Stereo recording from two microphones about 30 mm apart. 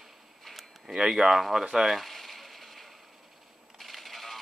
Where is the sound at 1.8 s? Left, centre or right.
Centre.